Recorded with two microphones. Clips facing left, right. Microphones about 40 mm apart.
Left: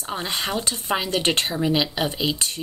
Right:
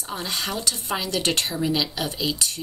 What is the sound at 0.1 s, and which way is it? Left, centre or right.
Speech, left.